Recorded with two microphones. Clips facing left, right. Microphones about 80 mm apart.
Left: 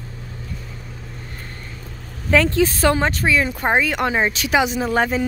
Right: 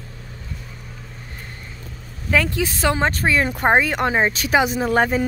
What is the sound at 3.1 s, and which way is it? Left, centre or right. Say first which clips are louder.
A woman's voice: even; right.